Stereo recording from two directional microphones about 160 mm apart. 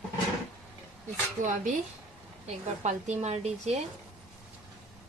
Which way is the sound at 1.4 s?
50° right (ahead or behind).